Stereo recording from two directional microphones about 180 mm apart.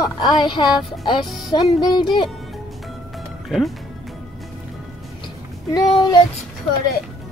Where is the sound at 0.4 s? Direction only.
25° left (ahead or behind).